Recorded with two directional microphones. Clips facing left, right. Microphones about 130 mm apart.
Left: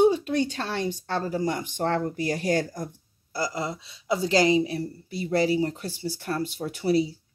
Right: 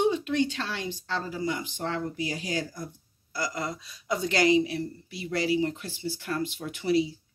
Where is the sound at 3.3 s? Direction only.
30° left (ahead or behind).